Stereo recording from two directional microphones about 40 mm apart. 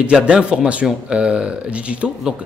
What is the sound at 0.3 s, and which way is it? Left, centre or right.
A man's voice, right.